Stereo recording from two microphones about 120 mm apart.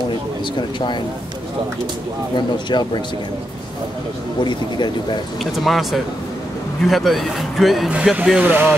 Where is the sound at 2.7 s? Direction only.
40° left (ahead or behind).